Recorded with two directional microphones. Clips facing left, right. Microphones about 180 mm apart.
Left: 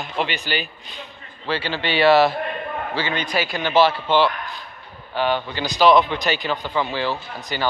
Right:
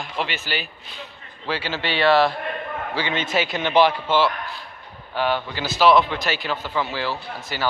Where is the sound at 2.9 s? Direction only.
20° right (ahead or behind).